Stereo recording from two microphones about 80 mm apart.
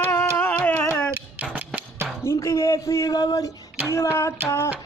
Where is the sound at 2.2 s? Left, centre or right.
Left.